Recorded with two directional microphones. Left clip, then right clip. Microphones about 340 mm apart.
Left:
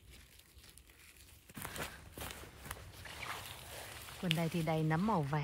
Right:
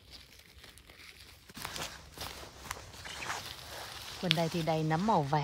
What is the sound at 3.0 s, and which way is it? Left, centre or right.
Walk, right.